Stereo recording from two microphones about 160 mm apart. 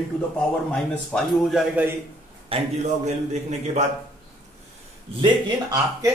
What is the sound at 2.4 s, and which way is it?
A man's voice, 40° right (ahead or behind).